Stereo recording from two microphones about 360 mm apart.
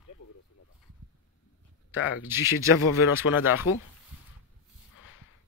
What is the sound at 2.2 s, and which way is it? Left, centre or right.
Speech, centre.